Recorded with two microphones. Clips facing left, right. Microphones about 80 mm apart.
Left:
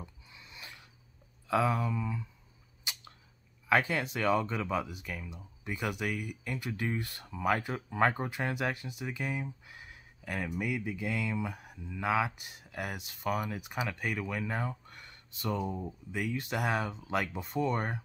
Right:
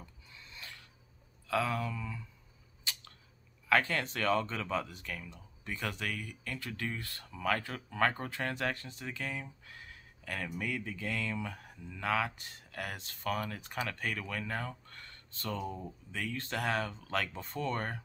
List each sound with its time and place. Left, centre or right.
0.0 s a sound: centre
1.5 s speech: left
2.8 s camera: centre
3.6 s speech: centre